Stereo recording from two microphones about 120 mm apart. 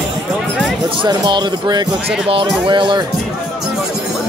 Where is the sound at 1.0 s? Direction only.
40° right (ahead or behind).